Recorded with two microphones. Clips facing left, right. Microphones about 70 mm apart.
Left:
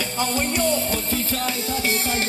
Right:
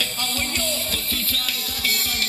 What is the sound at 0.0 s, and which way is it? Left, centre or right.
Music, left.